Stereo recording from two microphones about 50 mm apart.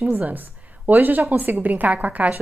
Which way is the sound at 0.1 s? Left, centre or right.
Right.